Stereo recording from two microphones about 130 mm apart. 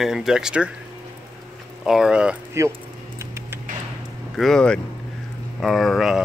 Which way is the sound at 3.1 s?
20° right (ahead or behind).